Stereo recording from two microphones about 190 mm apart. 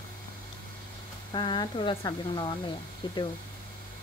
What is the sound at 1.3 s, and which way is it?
Speech, 25° left (ahead or behind).